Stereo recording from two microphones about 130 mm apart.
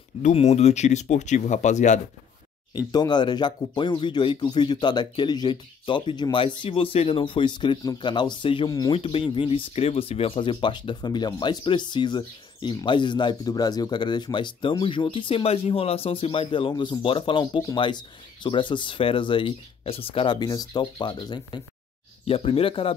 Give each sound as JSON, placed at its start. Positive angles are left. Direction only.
{"t": 0.2, "sound": "speech", "side_deg": 60}
{"t": 2.9, "sound": "speech", "side_deg": 35}
{"t": 22.2, "sound": "speech", "side_deg": 45}